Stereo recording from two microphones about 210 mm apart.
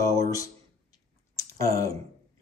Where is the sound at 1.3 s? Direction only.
15° left (ahead or behind).